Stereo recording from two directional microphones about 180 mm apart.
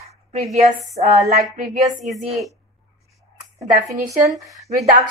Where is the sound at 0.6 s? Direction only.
40° right (ahead or behind).